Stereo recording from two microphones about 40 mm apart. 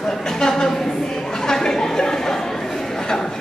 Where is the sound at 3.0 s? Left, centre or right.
Centre.